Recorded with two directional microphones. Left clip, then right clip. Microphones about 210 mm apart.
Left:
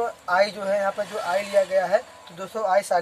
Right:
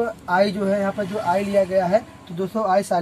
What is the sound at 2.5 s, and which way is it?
Speech, 20° left (ahead or behind).